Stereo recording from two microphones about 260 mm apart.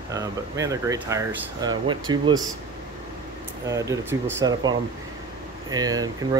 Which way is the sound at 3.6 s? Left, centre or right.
Centre.